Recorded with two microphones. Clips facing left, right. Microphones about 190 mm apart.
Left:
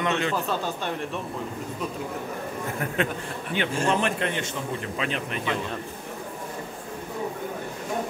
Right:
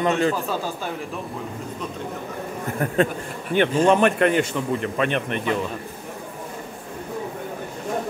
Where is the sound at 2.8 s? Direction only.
40° right (ahead or behind).